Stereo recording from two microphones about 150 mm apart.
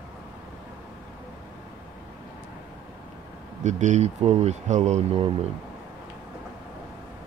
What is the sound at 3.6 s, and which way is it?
Speech, 55° right (ahead or behind).